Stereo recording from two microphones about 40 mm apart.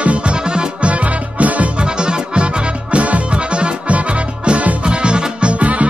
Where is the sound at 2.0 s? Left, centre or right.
Right.